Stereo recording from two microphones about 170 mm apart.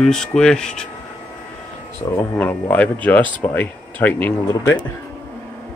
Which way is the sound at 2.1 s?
10° left (ahead or behind).